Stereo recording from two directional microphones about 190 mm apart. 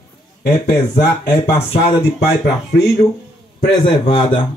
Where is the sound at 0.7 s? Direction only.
60° left (ahead or behind).